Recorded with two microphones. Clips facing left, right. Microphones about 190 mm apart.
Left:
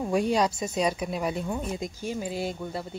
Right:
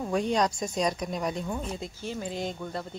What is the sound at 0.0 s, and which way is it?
Speech, 10° left (ahead or behind).